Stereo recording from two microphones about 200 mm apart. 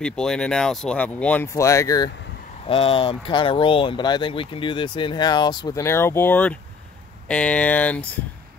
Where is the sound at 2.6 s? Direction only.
30° left (ahead or behind); by 8.0 s 5° left (ahead or behind).